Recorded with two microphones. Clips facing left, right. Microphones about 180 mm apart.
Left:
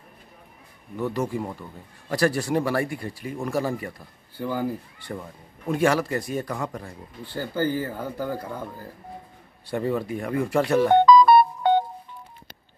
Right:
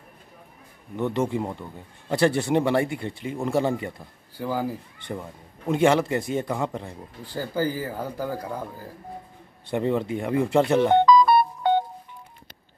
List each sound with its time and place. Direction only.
0.9 s a man's voice: 25° right (ahead or behind)
4.4 s speech: 10° right (ahead or behind)
5.0 s a man's voice: 20° right (ahead or behind)
7.3 s speech: 10° right (ahead or behind)
9.7 s a man's voice: 20° right (ahead or behind)